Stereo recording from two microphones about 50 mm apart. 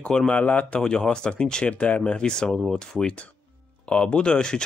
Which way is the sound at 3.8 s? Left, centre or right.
Left.